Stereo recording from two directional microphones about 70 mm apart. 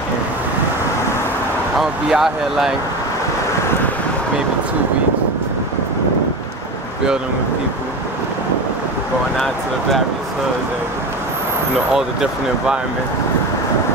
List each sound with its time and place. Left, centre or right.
1.8 s speech: centre
11.9 s speech: centre